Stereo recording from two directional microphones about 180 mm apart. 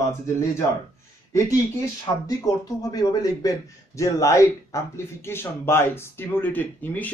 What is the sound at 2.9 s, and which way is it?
A man's voice, 20° left (ahead or behind).